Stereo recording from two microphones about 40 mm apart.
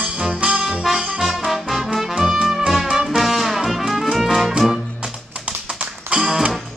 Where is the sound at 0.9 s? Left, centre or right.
Centre.